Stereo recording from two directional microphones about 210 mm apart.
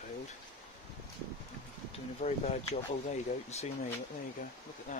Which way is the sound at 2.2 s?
30° left (ahead or behind).